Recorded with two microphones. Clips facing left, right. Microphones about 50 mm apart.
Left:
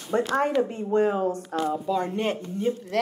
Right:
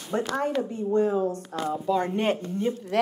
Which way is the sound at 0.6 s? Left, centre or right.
Left.